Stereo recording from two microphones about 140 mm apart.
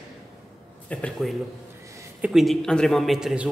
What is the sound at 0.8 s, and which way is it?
Speech, 10° left (ahead or behind).